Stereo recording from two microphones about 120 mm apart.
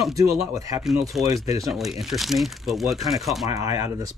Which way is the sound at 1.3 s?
30° right (ahead or behind).